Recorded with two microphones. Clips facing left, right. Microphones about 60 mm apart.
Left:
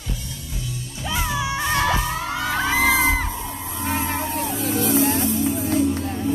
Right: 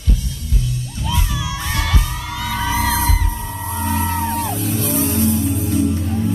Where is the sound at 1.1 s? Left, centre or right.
Left.